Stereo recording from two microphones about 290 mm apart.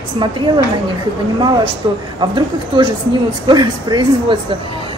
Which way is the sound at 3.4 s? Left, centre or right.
Centre.